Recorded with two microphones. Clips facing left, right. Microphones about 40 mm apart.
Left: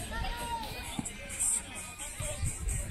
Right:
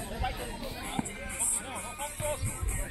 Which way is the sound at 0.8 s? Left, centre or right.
Centre.